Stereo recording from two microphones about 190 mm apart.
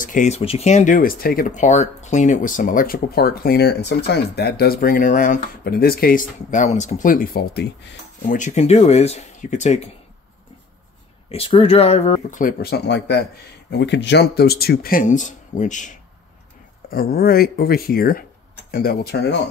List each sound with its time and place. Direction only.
0.0 s speech: 40° left (ahead or behind); by 7.9 s 60° left (ahead or behind)
8.3 s speech: 40° left (ahead or behind)
11.2 s speech: 30° left (ahead or behind)
12.6 s speech: 60° left (ahead or behind); by 16.0 s 40° left (ahead or behind)
16.9 s speech: 50° left (ahead or behind)